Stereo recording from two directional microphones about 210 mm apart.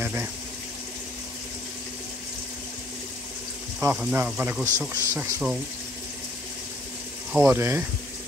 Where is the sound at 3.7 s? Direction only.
10° right (ahead or behind).